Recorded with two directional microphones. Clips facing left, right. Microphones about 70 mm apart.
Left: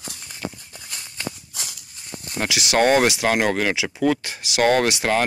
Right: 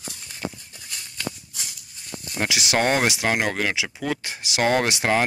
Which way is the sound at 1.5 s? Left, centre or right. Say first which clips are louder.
Left 2 dB; left.